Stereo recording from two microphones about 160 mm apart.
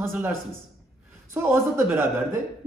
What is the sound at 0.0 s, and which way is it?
Speech, 15° right (ahead or behind).